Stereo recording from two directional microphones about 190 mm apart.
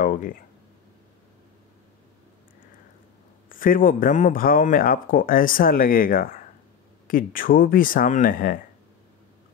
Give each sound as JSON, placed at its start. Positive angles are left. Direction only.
{"t": 0.0, "sound": "a man's voice", "side_deg": 45}
{"t": 3.4, "sound": "a man's voice", "side_deg": 45}